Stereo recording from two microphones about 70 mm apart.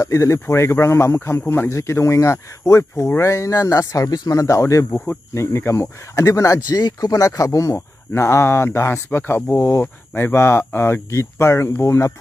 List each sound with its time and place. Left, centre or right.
0.0 s speech: left